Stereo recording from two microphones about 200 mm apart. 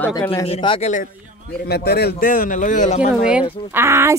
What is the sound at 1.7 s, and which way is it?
A man's voice, 55° left (ahead or behind).